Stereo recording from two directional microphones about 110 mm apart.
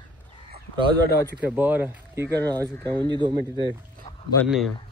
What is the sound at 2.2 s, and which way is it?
A man's voice, 35° right (ahead or behind).